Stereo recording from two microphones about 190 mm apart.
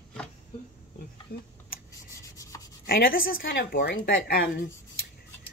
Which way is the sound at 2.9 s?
50° left (ahead or behind).